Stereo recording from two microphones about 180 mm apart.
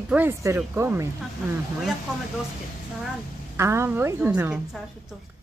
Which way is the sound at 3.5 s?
15° right (ahead or behind).